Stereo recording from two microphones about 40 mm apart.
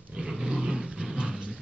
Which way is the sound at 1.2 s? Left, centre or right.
Right.